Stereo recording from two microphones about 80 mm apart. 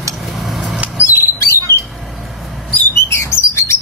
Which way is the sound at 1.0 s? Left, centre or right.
Left.